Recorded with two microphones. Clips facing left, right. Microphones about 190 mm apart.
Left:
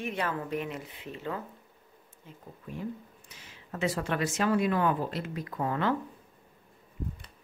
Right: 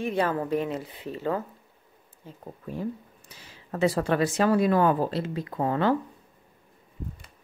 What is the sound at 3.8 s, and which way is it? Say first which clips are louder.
Speech: right 7 dB; 35° right (ahead or behind).